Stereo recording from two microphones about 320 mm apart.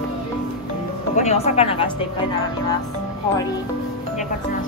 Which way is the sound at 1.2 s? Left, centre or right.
Centre.